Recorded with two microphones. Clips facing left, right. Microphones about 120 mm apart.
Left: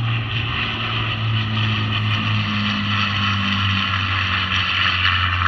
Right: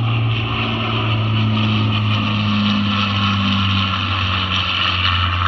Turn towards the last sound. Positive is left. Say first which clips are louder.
# right 1 dB
turn(degrees=-15)  # may be behind; listen again after turning